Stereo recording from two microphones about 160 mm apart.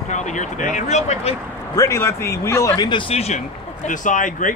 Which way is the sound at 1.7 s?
20° left (ahead or behind).